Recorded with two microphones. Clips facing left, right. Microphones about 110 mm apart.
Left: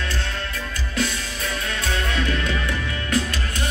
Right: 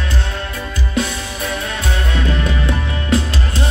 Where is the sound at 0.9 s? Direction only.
20° right (ahead or behind).